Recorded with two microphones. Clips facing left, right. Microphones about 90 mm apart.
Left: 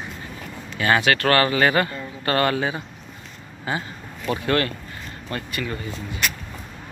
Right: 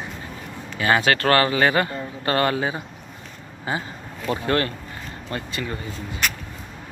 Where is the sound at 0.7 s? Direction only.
25° right (ahead or behind).